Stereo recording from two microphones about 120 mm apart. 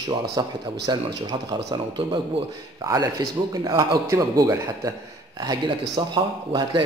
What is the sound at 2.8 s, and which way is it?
A man's voice, 30° right (ahead or behind).